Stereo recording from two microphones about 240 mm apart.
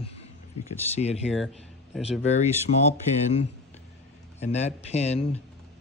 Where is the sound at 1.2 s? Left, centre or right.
Centre.